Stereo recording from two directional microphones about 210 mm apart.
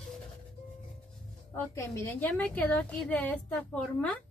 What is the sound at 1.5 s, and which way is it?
A woman's voice, 10° left (ahead or behind).